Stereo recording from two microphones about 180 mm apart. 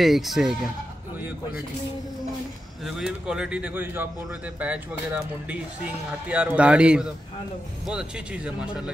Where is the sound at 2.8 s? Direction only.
5° right (ahead or behind).